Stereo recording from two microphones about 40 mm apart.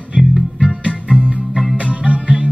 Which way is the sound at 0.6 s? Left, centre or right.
Right.